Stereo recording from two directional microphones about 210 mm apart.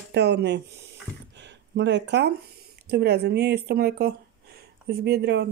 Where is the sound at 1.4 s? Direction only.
55° right (ahead or behind).